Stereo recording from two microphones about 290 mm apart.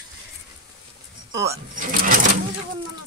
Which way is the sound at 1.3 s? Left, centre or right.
Centre.